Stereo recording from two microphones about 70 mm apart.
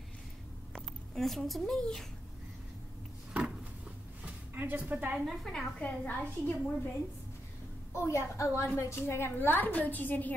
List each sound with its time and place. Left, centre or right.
0.7 s speech: centre
4.6 s a woman's voice: right
5.2 s a woman's voice: centre
5.8 s a woman's voice: left
7.9 s a woman's voice: left